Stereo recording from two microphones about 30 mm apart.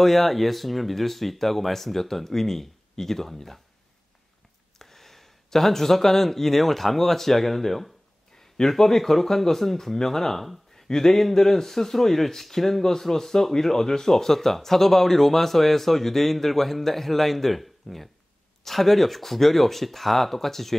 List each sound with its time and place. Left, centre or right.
0.0 s speech: centre
4.7 s speech: centre
10.9 s a sound: centre
11.1 s speech: centre